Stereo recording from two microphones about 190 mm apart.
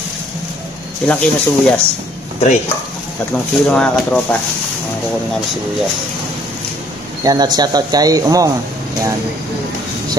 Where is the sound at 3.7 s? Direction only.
5° left (ahead or behind).